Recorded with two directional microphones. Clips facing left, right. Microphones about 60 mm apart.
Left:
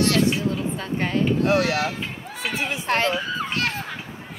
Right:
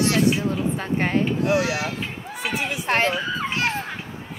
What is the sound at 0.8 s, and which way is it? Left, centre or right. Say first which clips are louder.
Speech: right 2 dB; right.